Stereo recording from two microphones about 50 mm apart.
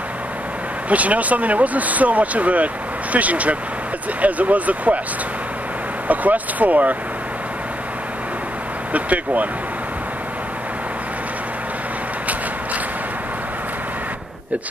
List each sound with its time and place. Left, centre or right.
0.8 s speech: right
6.0 s speech: right
8.9 s speech: right